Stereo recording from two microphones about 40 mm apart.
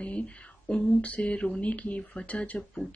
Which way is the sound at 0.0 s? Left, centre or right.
Left.